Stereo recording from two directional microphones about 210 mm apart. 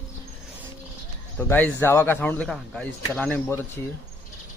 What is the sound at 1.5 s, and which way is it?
Speech, 10° left (ahead or behind).